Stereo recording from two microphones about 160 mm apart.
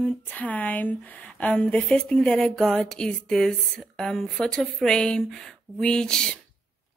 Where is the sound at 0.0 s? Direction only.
10° left (ahead or behind).